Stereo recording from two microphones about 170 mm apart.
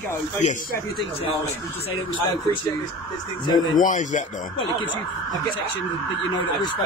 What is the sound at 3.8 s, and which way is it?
Speech, 50° left (ahead or behind).